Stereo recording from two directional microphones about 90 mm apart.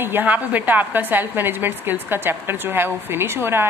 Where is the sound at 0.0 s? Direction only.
20° right (ahead or behind).